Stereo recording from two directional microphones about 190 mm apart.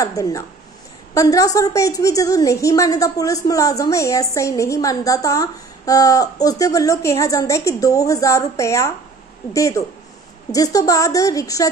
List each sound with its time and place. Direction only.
0.0 s a woman's voice: 20° left (ahead or behind)